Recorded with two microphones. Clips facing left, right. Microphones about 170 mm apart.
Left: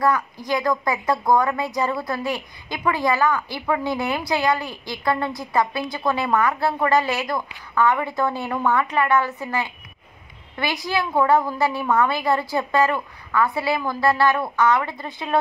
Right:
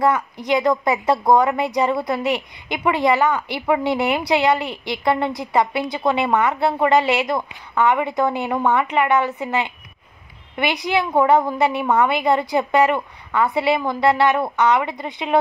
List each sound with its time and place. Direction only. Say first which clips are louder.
0.0 s a woman's voice: right 2 dB; 20° right (ahead or behind)